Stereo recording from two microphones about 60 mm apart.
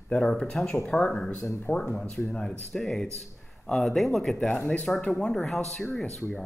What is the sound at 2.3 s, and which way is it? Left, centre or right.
A man's voice, centre.